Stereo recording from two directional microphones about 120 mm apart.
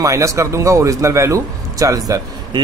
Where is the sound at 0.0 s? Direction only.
25° right (ahead or behind).